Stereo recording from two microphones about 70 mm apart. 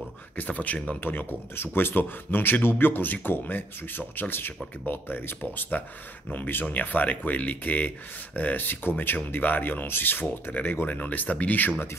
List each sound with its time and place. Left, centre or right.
0.4 s speech: left
1.0 s speech: left